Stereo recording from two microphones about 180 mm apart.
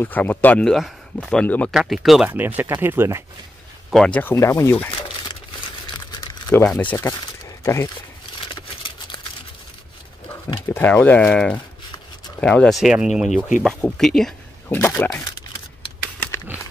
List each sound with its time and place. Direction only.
0.0 s speech: 10° left (ahead or behind); by 3.3 s 15° right (ahead or behind)
3.9 s speech: 5° left (ahead or behind)
4.9 s crumpling: 30° left (ahead or behind)
6.5 s speech: 5° left (ahead or behind)
7.2 s a sound: 15° left (ahead or behind)
10.7 s speech: 10° left (ahead or behind)
14.8 s speech: 15° left (ahead or behind)